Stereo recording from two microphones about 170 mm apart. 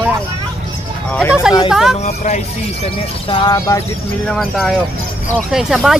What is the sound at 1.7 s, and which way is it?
Speech, centre (ahead or behind).